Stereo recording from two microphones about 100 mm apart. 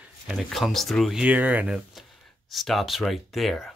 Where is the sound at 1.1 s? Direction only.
15° right (ahead or behind).